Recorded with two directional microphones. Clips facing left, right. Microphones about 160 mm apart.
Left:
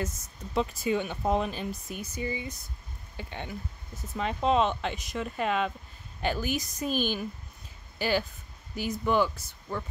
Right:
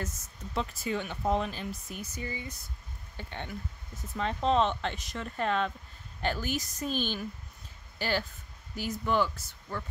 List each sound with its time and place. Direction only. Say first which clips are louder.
0.6 s speech: left 5 dB; 15° left (ahead or behind)